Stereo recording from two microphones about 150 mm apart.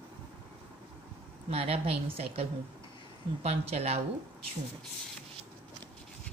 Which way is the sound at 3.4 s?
45° right (ahead or behind).